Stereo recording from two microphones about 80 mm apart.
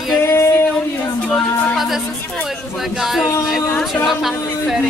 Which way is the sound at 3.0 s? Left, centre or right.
Centre.